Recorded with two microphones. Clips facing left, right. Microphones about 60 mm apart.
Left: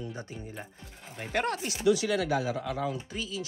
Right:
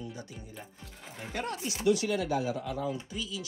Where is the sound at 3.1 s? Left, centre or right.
Left.